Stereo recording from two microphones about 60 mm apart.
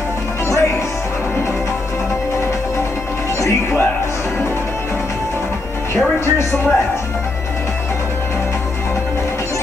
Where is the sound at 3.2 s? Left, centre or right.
Left.